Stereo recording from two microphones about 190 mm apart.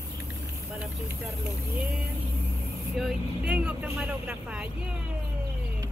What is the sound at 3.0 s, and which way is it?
Speech, 5° right (ahead or behind).